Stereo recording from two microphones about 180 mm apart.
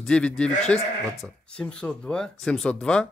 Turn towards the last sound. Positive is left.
turn(degrees=5)  # may be behind; listen again after turning